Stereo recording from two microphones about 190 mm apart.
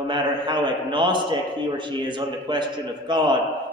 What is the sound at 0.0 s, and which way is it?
A man's voice, 25° right (ahead or behind).